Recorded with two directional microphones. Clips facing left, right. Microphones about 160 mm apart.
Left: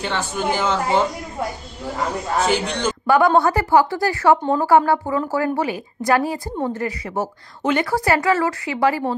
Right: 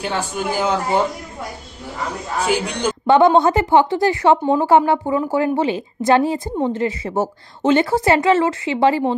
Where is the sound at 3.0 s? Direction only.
25° right (ahead or behind).